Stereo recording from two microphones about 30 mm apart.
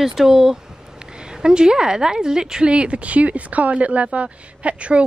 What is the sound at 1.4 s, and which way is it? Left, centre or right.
A woman's voice, right.